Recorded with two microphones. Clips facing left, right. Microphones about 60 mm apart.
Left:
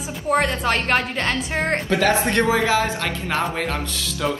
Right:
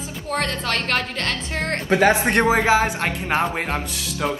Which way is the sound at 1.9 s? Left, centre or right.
Right.